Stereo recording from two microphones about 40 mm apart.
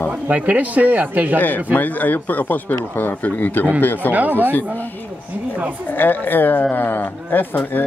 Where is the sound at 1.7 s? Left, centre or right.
Left.